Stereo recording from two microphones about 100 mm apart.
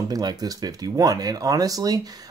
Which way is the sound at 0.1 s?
40° right (ahead or behind).